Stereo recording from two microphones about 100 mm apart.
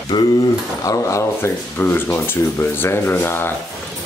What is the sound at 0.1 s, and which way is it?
Speech, 45° left (ahead or behind).